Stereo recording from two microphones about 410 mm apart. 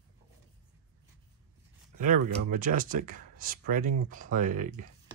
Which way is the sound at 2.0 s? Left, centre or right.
Centre.